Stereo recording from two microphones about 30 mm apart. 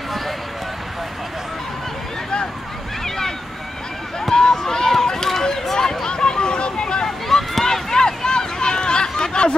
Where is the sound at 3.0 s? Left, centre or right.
Centre.